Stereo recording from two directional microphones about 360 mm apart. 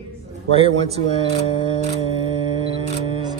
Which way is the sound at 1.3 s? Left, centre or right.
Centre.